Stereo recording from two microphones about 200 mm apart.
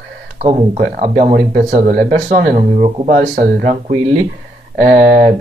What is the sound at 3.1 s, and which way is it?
Speech, 45° right (ahead or behind).